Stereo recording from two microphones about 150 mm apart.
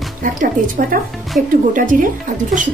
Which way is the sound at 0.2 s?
65° right (ahead or behind).